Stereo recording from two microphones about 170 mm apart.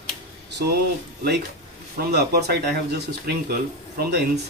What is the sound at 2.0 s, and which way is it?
Speech, 70° right (ahead or behind).